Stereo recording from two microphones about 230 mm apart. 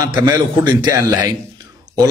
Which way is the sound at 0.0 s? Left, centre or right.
Centre.